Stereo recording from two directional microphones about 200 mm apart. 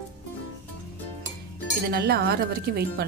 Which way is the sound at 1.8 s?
50° right (ahead or behind).